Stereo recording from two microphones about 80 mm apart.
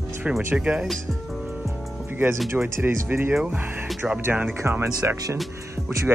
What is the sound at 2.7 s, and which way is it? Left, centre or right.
Speech, right.